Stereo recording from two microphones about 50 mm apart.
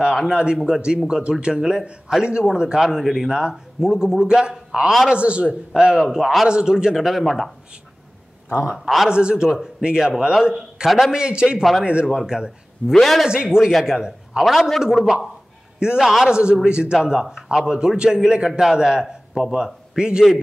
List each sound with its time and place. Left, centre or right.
0.3 s a man's voice: centre
3.3 s a man's voice: centre
7.1 s a man's voice: centre
8.6 s a man's voice: centre
9.1 s a man's voice: centre
10.5 s a man's voice: centre
12.9 s a man's voice: centre
13.3 s a man's voice: centre
13.7 s a man's voice: centre
13.9 s a man's voice: centre
14.4 s a man's voice: centre
16.3 s a man's voice: centre